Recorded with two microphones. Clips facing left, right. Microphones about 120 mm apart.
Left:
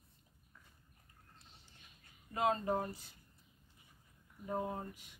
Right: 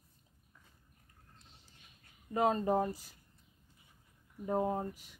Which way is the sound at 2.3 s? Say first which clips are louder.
Right 4 dB; 30° right (ahead or behind).